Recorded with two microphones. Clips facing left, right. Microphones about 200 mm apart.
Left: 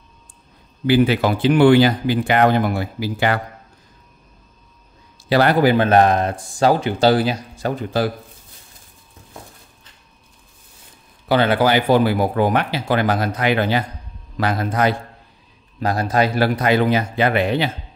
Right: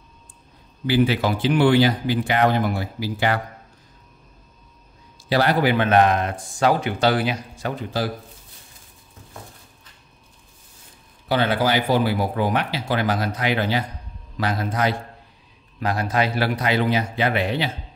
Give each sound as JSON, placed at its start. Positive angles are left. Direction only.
{"t": 0.8, "sound": "speech", "side_deg": 55}
{"t": 5.3, "sound": "speech", "side_deg": 60}
{"t": 5.6, "sound": "speech", "side_deg": 40}
{"t": 11.2, "sound": "speech", "side_deg": 60}
{"t": 15.8, "sound": "speech", "side_deg": 40}